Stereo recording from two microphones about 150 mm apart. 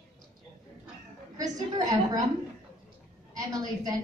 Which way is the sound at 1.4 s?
25° right (ahead or behind).